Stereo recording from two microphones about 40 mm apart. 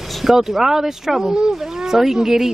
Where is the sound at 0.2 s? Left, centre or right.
Centre.